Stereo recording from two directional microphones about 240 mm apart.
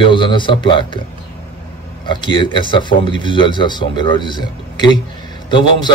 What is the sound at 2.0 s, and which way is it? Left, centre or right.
A man's voice, centre.